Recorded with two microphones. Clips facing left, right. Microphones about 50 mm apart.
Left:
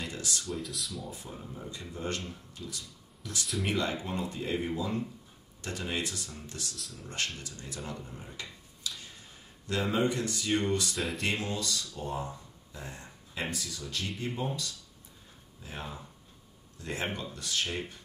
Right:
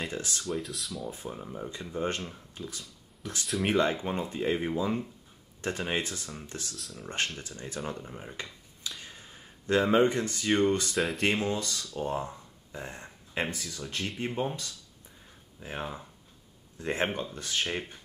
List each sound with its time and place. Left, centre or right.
0.0 s speech: right
0.5 s speech: centre
1.1 s speech: right
6.8 s speech: centre
7.1 s speech: right
7.9 s a sound: right
9.7 s speech: right